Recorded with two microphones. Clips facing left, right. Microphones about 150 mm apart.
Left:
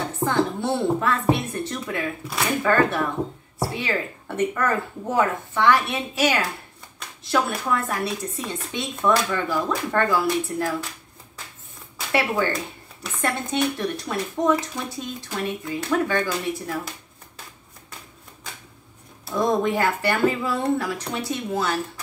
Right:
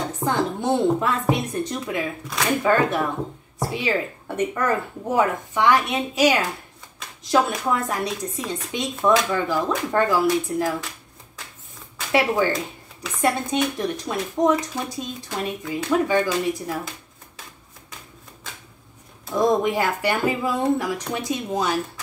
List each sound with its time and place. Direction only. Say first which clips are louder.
0.2 s speech: left 1 dB; 15° right (ahead or behind)
12.1 s speech: right 3 dB; 15° right (ahead or behind)
19.3 s speech: right 2 dB; 15° right (ahead or behind)